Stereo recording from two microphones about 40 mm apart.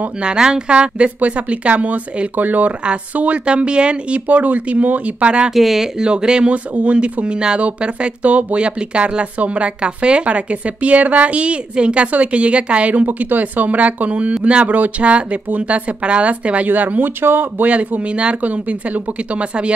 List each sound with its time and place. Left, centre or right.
0.2 s speech: centre; by 2.7 s right
3.4 s speech: right
4.3 s speech: right
5.5 s speech: centre
5.9 s speech: right
6.5 s speech: right
12.9 s speech: right
16.6 s speech: right
17.0 s speech: right
18.0 s speech: right